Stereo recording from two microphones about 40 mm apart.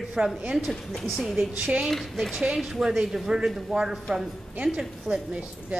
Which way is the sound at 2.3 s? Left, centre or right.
Centre.